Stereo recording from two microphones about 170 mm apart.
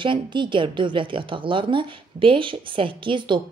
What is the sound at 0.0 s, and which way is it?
A woman's voice, 30° right (ahead or behind).